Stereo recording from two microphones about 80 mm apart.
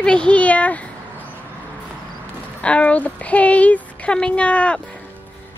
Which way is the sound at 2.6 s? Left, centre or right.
Centre.